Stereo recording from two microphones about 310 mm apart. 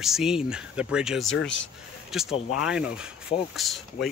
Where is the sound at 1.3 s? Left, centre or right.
Left.